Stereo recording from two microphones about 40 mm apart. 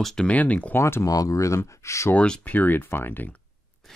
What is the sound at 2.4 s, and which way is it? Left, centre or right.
Speech, left.